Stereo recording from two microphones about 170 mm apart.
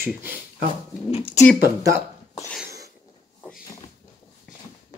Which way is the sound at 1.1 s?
35° left (ahead or behind).